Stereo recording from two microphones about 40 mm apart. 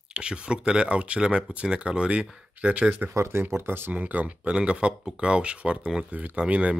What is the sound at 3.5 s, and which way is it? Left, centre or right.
Speech, right.